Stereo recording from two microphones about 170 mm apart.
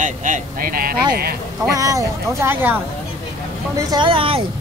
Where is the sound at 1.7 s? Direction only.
20° right (ahead or behind).